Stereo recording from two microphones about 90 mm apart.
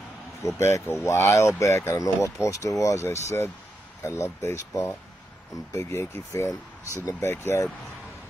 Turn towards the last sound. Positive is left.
turn(degrees=30)  # may be behind; listen again after turning